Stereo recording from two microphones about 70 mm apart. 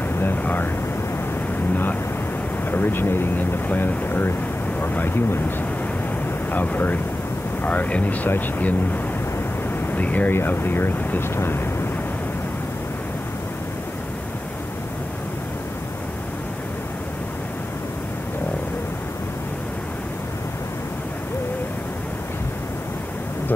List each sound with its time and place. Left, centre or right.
0.2 s vehicle: left
2.7 s speech: left
6.5 s speech: left